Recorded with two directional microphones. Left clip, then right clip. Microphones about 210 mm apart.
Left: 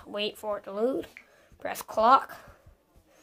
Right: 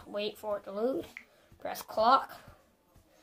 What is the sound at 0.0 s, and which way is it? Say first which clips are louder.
Speech: left 4 dB; 30° left (ahead or behind).